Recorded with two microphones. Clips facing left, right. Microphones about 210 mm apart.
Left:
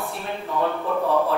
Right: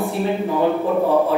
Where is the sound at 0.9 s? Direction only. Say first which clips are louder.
Right 3 dB; 25° right (ahead or behind).